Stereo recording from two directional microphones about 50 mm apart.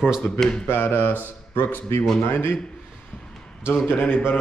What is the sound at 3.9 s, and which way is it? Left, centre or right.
Speech, left.